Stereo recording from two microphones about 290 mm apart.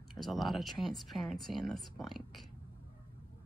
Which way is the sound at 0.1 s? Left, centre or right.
Centre.